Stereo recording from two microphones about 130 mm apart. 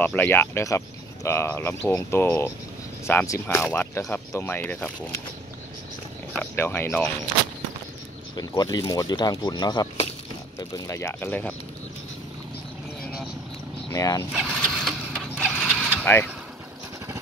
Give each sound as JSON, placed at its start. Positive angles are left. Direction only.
{"t": 0.0, "sound": "speech", "side_deg": 15}
{"t": 6.3, "sound": "speech", "side_deg": 15}
{"t": 8.4, "sound": "speech", "side_deg": 30}
{"t": 10.7, "sound": "speech", "side_deg": 20}
{"t": 13.8, "sound": "speech", "side_deg": 25}
{"t": 14.5, "sound": "printer", "side_deg": 5}
{"t": 15.4, "sound": "mechanisms", "side_deg": 10}
{"t": 16.0, "sound": "speech", "side_deg": 15}